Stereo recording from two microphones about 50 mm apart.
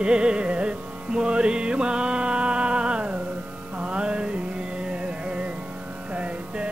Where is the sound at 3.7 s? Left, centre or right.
Right.